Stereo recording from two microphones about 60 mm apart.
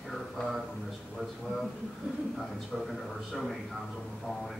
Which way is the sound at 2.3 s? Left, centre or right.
Centre.